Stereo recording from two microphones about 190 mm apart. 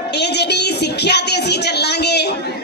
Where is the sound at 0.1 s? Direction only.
60° left (ahead or behind).